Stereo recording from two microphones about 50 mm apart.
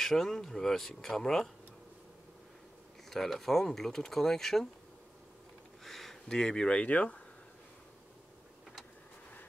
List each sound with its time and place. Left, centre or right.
0.0 s speech: centre
3.1 s speech: centre
5.9 s speech: centre; by 7.2 s left